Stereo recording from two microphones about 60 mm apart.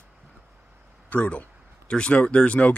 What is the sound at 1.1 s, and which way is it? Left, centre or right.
Speech, left.